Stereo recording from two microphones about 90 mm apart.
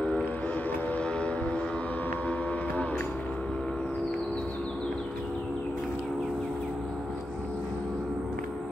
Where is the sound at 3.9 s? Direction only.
10° left (ahead or behind).